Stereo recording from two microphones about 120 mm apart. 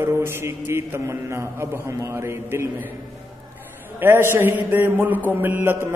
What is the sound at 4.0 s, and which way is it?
A man's voice, 20° right (ahead or behind).